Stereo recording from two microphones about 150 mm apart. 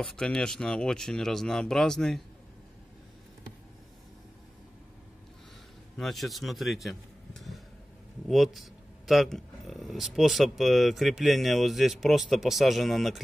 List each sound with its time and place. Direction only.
0.0 s speech: 5° left (ahead or behind)
5.9 s a man's voice: centre (ahead or behind)